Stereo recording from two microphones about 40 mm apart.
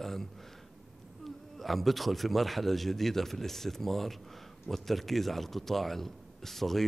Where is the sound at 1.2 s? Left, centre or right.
Centre.